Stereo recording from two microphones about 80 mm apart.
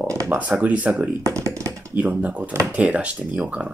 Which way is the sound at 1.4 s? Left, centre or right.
Right.